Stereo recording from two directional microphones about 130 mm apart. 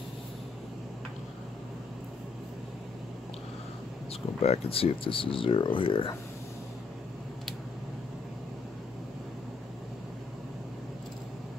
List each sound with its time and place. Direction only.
4.4 s speech: 50° left (ahead or behind)